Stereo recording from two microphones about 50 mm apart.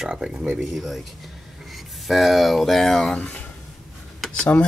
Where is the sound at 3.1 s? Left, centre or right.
Left.